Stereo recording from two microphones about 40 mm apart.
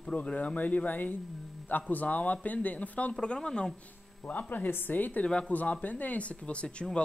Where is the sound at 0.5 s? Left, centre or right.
Left.